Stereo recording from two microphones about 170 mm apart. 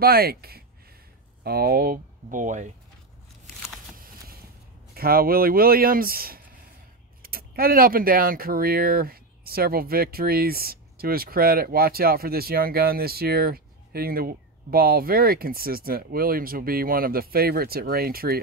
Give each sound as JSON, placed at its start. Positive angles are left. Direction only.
{"t": 0.0, "sound": "speech", "side_deg": -65}
{"t": 3.9, "sound": "a sound", "side_deg": -55}
{"t": 4.9, "sound": "speech", "side_deg": -60}